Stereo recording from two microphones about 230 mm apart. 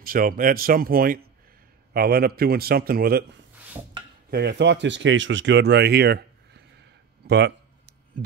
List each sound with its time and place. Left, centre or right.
0.0 s a man's voice: right
3.8 s a sound: centre
4.3 s speech: right